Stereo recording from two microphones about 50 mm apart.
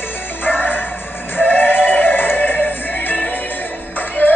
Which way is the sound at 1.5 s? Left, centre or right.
Left.